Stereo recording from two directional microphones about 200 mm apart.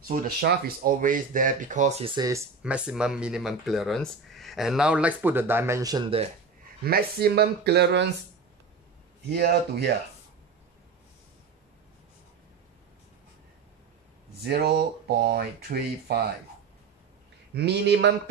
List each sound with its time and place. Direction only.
0.1 s speech: 50° right (ahead or behind); by 2.4 s 20° right (ahead or behind)
2.6 s speech: 5° right (ahead or behind); by 6.3 s 30° right (ahead or behind)
6.8 s speech: 50° right (ahead or behind)
9.3 s speech: 55° right (ahead or behind)
14.4 s speech: 50° right (ahead or behind)
17.6 s speech: 55° right (ahead or behind)